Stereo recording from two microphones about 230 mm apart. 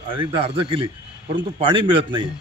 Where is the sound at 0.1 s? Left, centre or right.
Right.